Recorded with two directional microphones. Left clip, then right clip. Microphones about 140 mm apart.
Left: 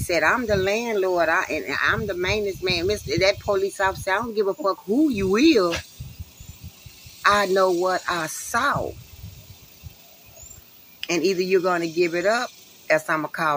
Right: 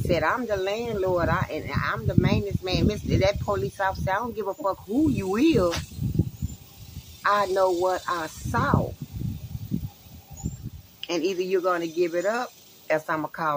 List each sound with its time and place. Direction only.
0.1 s speech: centre (ahead or behind)
7.2 s speech: centre (ahead or behind)
11.0 s speech: centre (ahead or behind)